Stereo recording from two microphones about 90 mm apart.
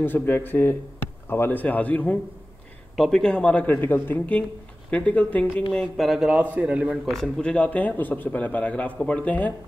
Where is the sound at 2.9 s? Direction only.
5° left (ahead or behind).